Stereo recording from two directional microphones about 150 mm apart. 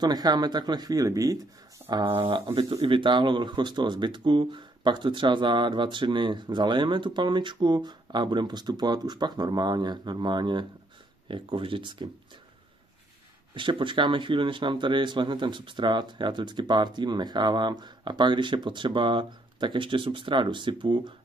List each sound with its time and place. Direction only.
0.0 s speech: 25° right (ahead or behind)
1.9 s speech: 30° right (ahead or behind)
13.6 s speech: 35° right (ahead or behind)